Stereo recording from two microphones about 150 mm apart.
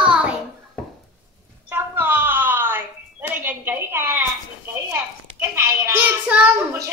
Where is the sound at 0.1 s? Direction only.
5° right (ahead or behind).